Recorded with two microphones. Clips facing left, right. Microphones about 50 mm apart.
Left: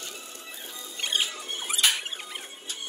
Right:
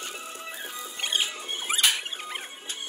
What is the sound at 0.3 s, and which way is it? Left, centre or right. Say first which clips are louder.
Music: right 5 dB; right.